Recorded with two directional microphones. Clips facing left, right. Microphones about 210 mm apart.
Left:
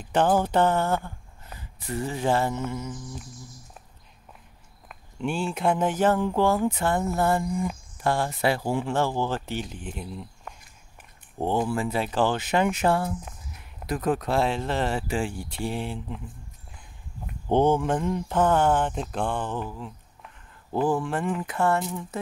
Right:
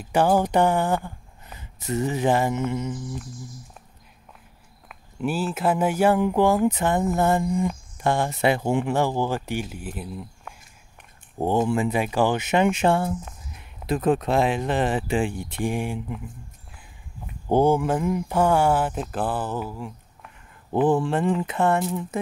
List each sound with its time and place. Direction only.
0.0 s speech: 10° right (ahead or behind)
4.8 s speech: 5° right (ahead or behind)
11.3 s speech: 15° right (ahead or behind)
17.5 s speech: 10° right (ahead or behind)
20.8 s speech: 25° right (ahead or behind)